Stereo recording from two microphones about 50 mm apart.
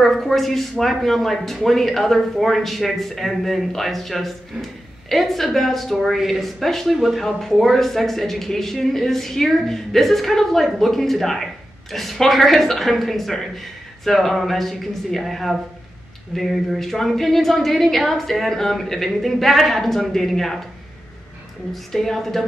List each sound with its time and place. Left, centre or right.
0.0 s speech: centre
21.7 s speech: centre